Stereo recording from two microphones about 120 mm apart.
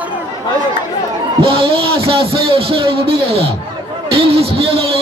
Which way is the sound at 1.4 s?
50° right (ahead or behind).